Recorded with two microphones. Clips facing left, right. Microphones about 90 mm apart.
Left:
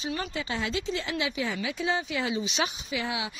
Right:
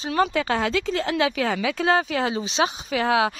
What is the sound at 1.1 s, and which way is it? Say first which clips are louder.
Speech: right 9 dB; 60° right (ahead or behind).